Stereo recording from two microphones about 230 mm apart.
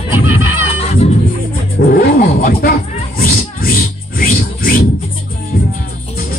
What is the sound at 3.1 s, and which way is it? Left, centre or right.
Music, left.